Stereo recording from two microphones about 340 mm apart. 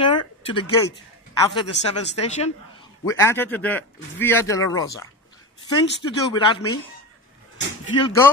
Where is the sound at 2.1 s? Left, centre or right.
Centre.